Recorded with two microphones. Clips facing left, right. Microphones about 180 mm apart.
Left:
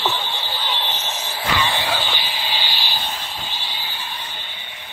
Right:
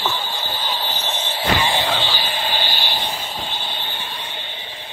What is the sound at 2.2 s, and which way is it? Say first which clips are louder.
Vehicle: right 4 dB; 50° right (ahead or behind).